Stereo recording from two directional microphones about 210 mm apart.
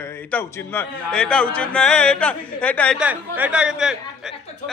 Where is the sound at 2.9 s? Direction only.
5° right (ahead or behind).